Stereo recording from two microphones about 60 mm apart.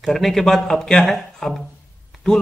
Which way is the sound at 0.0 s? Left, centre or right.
Centre.